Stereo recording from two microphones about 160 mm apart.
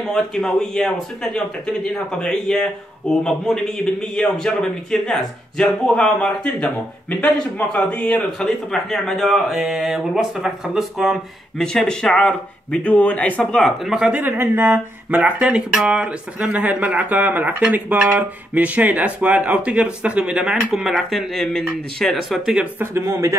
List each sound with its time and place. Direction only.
0.1 s speech: 5° left (ahead or behind); by 23.3 s 15° right (ahead or behind)